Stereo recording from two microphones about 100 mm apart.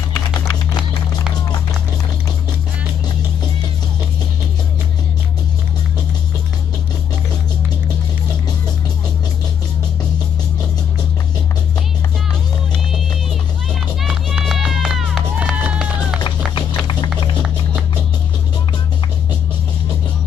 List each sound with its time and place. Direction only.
14.0 s run: 5° right (ahead or behind)
16.3 s music: 55° left (ahead or behind)